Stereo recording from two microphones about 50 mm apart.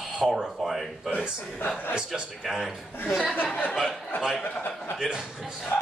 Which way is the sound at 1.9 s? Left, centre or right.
Centre.